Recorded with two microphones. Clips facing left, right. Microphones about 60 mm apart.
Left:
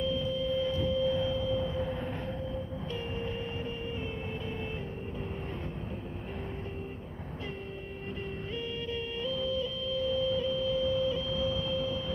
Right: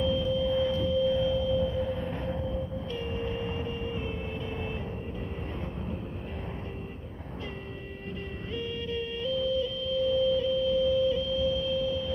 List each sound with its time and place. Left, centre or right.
0.0 s a sound: centre
2.9 s vehicle: centre
8.5 s music: centre